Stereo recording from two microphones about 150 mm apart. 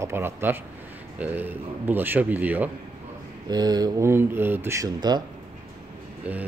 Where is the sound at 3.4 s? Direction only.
25° right (ahead or behind).